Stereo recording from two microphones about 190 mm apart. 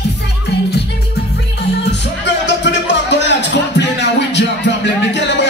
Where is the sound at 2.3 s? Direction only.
65° left (ahead or behind).